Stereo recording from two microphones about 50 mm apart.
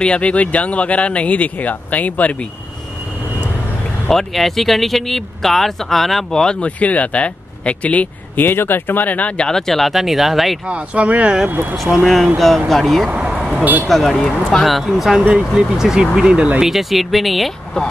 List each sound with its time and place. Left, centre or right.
0.0 s speech: left
4.1 s speech: centre
6.4 s speech: left
8.5 s speech: left
9.4 s speech: centre
10.7 s speech: right
11.7 s speech: centre
13.1 s a sound: centre
13.4 s a sound: centre
13.8 s speech: centre
15.2 s speech: centre
16.5 s speech: centre